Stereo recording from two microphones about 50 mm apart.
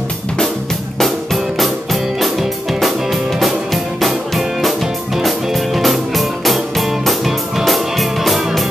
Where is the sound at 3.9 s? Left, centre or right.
Centre.